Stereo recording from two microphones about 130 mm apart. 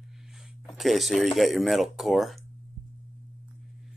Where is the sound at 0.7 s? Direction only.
Centre (ahead or behind).